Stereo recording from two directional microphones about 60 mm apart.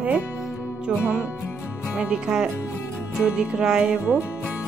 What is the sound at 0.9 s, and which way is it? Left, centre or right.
Music, centre.